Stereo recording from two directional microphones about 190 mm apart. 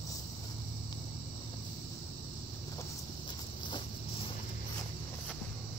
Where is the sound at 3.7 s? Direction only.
30° left (ahead or behind).